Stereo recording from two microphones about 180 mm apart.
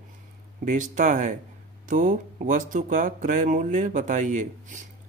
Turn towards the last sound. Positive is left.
turn(degrees=-45)  # may be behind; listen again after turning